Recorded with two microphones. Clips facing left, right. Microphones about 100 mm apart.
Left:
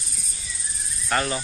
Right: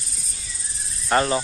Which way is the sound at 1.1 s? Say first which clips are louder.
Right 5 dB; 30° right (ahead or behind).